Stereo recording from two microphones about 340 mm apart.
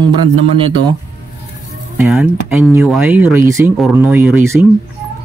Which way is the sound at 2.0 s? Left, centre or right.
Centre.